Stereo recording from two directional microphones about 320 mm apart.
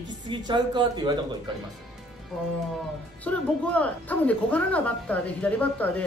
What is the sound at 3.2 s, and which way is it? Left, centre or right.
Speech, centre.